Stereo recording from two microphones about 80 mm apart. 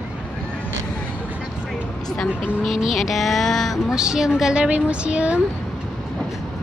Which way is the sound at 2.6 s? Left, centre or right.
Centre.